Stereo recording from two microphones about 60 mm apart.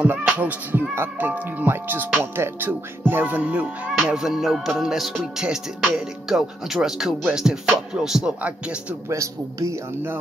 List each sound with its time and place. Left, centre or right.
0.0 s speech: right
4.1 s speech: centre
9.1 s speech: right